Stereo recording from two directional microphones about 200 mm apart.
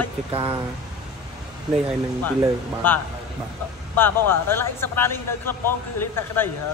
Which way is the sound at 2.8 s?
10° left (ahead or behind).